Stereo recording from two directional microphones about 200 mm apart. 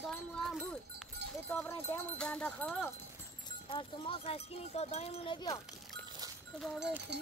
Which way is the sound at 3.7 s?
25° left (ahead or behind).